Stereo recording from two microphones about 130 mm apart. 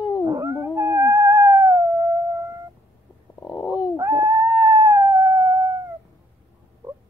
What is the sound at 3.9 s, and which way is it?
Howl, 20° right (ahead or behind).